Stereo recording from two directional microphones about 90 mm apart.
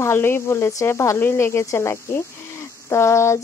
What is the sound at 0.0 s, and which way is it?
Speech, 30° left (ahead or behind).